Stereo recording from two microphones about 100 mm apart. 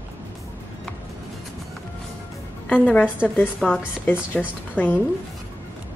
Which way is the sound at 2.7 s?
15° left (ahead or behind).